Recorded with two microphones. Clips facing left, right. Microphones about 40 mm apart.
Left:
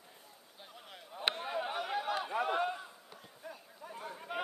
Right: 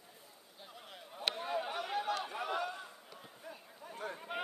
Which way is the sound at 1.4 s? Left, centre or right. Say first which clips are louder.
Left 1 dB; centre.